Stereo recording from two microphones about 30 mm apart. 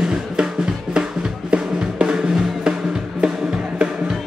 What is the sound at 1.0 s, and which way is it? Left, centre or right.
Music, centre.